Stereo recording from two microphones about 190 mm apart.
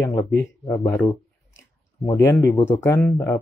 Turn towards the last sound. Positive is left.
turn(degrees=15)  # may be behind; listen again after turning